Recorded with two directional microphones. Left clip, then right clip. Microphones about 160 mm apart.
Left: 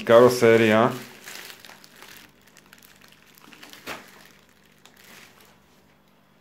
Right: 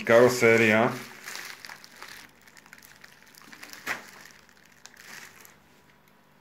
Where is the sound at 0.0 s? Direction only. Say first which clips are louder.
Left 4 dB; 10° left (ahead or behind).